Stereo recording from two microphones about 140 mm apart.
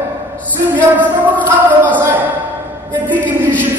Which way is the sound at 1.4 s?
15° right (ahead or behind).